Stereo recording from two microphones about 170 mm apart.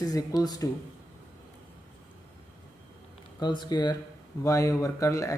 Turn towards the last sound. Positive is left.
turn(degrees=20)  # may be behind; listen again after turning